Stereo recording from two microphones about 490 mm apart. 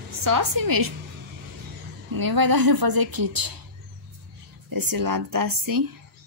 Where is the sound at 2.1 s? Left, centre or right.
Right.